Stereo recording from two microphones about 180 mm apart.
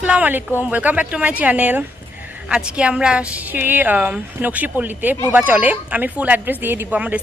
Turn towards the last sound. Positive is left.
turn(degrees=-10)  # may be behind; listen again after turning